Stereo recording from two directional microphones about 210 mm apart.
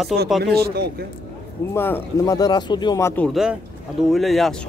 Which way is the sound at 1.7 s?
10° left (ahead or behind).